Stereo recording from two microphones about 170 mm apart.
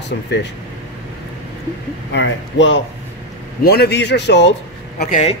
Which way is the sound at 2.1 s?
90° left.